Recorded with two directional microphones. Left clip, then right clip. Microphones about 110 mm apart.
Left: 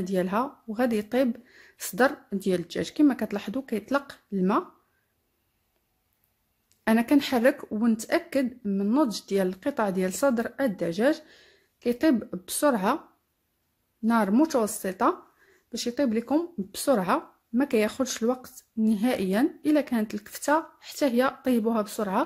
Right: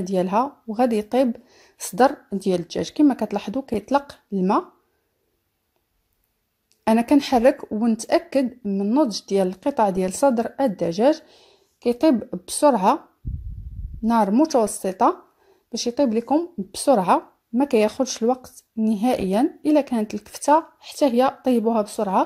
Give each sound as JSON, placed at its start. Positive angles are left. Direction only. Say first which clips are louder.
{"t": 0.0, "sound": "a woman's voice", "louder": "right 6 dB", "side_deg": -30}
{"t": 6.8, "sound": "a woman's voice", "louder": "right 5 dB", "side_deg": -30}
{"t": 8.6, "sound": "speech", "louder": "right 4 dB", "side_deg": -20}
{"t": 14.0, "sound": "a woman's voice", "louder": "right 5 dB", "side_deg": -30}